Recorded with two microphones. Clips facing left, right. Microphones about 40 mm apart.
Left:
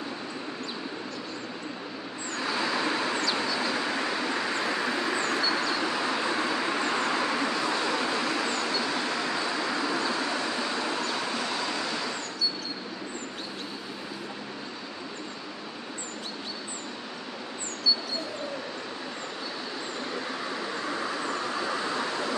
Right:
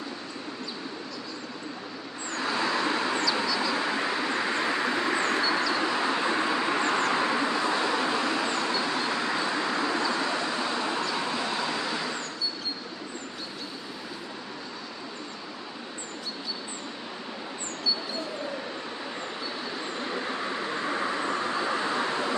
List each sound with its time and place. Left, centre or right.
2.4 s vehicle: centre
5.2 s vehicle: right
20.4 s vehicle: right